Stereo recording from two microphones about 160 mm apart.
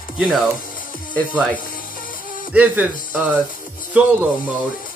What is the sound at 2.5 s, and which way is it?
Speech, 10° right (ahead or behind).